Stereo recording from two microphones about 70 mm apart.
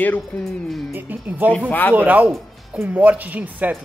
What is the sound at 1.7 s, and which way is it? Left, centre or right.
Speech, left.